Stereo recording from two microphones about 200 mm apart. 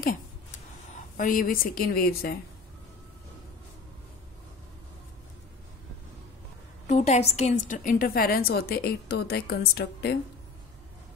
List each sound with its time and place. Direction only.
0.9 s a woman's voice: 40° left (ahead or behind)
6.9 s a woman's voice: 35° left (ahead or behind); by 10.1 s 50° left (ahead or behind)